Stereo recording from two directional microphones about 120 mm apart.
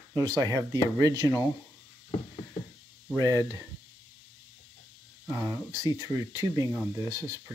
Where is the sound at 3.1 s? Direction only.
30° right (ahead or behind).